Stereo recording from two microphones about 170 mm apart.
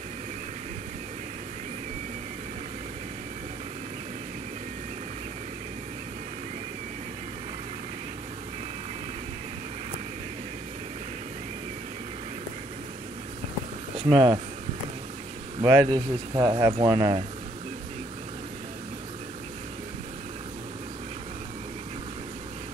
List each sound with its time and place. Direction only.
13.9 s speech: 30° right (ahead or behind)
15.6 s a man's voice: 15° right (ahead or behind)
15.9 s speech: 25° right (ahead or behind)